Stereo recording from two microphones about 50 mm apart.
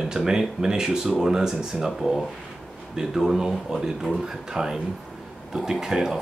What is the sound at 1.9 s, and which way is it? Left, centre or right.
Speech, centre.